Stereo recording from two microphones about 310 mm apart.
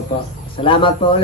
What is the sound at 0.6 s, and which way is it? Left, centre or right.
Speech, centre.